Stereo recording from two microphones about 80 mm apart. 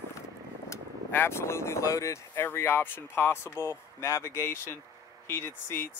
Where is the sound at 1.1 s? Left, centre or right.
Left.